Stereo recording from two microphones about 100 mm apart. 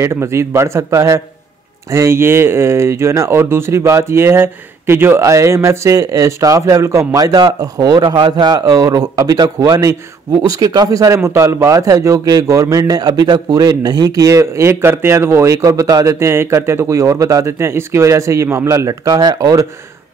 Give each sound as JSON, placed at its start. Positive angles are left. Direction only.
{"t": 0.0, "sound": "a man's voice", "side_deg": -30}
{"t": 8.1, "sound": "a man's voice", "side_deg": -45}